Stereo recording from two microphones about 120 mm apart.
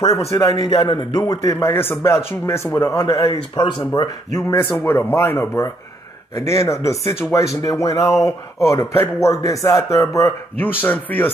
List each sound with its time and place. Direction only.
0.3 s speech: 25° left (ahead or behind)
0.7 s speech: 40° left (ahead or behind)
1.2 s speech: 25° left (ahead or behind)
3.5 s speech: 40° left (ahead or behind)
4.4 s speech: 20° left (ahead or behind)
10.6 s speech: 15° left (ahead or behind)